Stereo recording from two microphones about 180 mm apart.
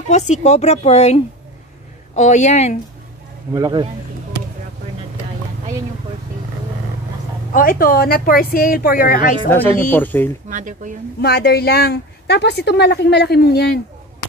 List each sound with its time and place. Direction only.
0.1 s speech: 40° left (ahead or behind)
3.5 s speech: 25° right (ahead or behind)
7.5 s a woman's voice: 50° left (ahead or behind)
9.8 s speech: 10° left (ahead or behind)
10.5 s speech: 45° right (ahead or behind)
11.1 s speech: 60° left (ahead or behind)